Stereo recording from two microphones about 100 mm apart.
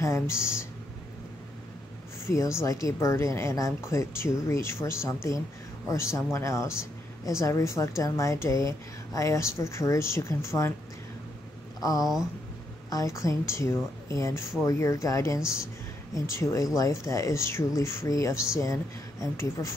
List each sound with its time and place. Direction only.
0.0 s speech: 25° left (ahead or behind)
2.2 s speech: 30° left (ahead or behind)
11.8 s speech: 35° left (ahead or behind)